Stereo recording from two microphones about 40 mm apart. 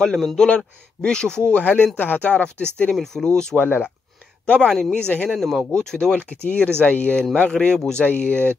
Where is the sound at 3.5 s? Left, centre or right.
Left.